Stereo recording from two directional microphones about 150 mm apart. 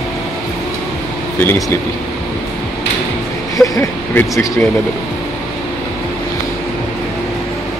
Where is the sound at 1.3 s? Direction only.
15° left (ahead or behind).